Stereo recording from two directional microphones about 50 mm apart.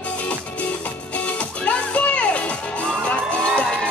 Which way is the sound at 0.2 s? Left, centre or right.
Left.